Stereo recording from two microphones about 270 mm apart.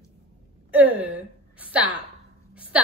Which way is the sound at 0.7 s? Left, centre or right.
Centre.